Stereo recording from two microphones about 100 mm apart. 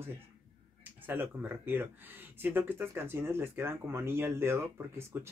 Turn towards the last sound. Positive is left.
turn(degrees=-25)  # may be behind; listen again after turning